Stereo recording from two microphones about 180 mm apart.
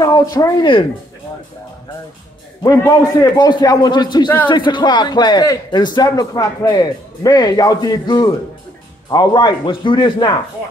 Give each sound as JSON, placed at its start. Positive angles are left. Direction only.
{"t": 0.0, "sound": "speech", "side_deg": 20}
{"t": 2.6, "sound": "a man's voice", "side_deg": 20}